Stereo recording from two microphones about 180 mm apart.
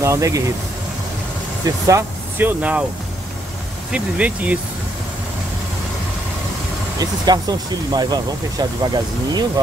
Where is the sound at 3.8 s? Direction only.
5° right (ahead or behind).